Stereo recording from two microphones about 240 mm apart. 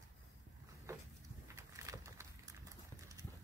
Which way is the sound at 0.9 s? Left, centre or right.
Centre.